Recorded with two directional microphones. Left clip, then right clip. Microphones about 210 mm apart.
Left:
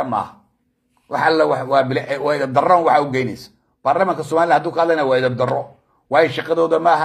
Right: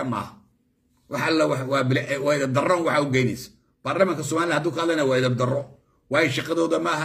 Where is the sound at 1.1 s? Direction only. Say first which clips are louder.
Left 7 dB; 15° right (ahead or behind).